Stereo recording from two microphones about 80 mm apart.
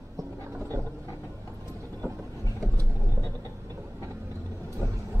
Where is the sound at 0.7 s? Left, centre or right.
Right.